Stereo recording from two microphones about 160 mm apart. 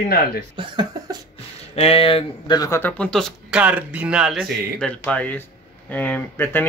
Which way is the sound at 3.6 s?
10° right (ahead or behind).